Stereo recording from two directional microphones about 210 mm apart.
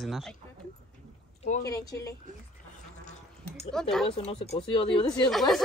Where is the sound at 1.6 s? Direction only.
15° left (ahead or behind).